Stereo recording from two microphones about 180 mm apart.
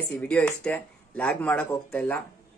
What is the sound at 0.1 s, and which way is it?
Speech, 5° left (ahead or behind).